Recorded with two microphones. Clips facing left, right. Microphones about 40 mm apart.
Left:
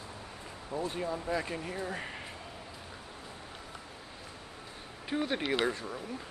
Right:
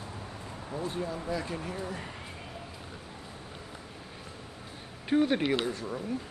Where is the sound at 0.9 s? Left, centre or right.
Centre.